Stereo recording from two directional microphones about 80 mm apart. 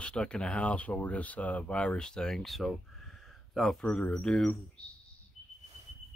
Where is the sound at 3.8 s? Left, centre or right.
Centre.